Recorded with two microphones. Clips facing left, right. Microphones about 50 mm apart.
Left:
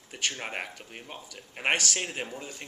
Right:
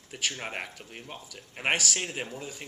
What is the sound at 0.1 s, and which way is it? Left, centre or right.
A man's voice, centre.